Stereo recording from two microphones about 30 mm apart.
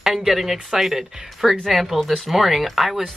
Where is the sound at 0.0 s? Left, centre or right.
Centre.